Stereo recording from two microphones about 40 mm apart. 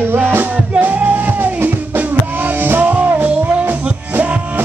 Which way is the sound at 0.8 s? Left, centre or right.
Right.